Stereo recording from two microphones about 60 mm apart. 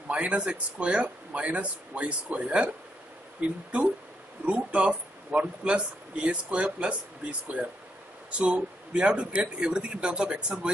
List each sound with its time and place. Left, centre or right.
0.1 s a man's voice: centre